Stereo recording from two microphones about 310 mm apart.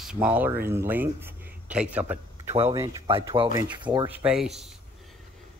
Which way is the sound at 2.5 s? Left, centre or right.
Centre.